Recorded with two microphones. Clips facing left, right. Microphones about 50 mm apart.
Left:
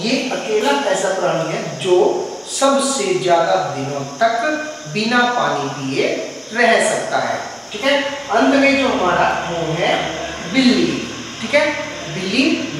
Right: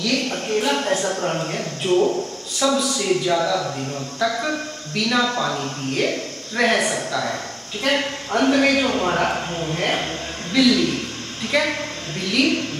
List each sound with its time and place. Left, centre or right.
0.0 s a man's voice: centre
2.6 s a man's voice: centre